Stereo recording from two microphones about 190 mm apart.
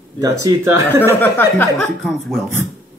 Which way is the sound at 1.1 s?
10° left (ahead or behind).